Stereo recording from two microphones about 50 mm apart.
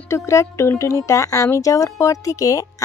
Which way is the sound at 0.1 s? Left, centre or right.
Left.